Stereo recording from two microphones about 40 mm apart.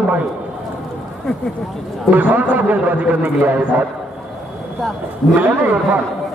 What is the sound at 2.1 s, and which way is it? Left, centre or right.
Speech, right.